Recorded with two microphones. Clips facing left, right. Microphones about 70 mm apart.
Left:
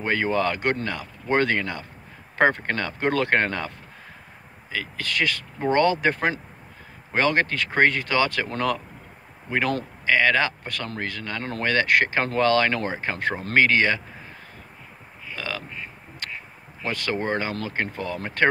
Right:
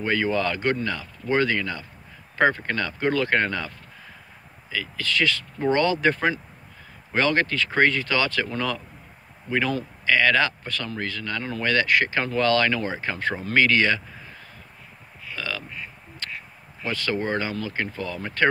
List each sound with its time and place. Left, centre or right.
0.0 s speech: left
1.3 s speech: left
15.3 s crow: left
16.8 s speech: left